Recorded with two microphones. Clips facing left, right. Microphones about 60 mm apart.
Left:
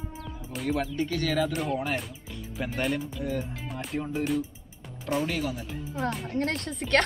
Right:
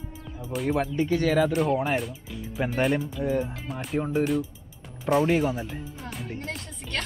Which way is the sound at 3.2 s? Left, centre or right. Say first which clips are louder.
Right 6 dB; right.